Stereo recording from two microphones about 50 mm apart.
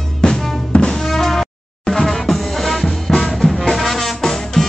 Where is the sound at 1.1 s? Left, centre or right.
Centre.